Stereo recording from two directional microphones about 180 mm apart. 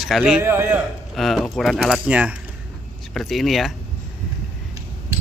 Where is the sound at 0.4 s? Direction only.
10° right (ahead or behind).